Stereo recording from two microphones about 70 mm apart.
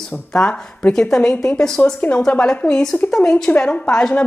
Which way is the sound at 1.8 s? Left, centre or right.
Left.